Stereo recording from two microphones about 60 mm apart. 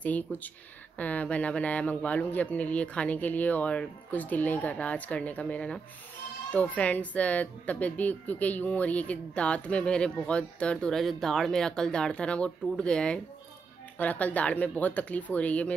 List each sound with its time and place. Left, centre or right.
0.0 s speech: left
11.0 s speech: centre; by 15.7 s left